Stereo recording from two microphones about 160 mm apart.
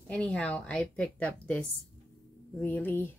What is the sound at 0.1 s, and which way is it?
Speech, 5° left (ahead or behind).